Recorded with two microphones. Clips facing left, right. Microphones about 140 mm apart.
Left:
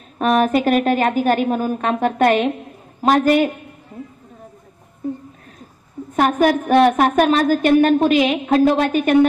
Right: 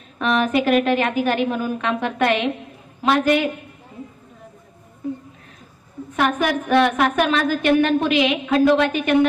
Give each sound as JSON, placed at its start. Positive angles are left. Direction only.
{"t": 0.2, "sound": "a woman's voice", "side_deg": 40}
{"t": 6.1, "sound": "a woman's voice", "side_deg": 40}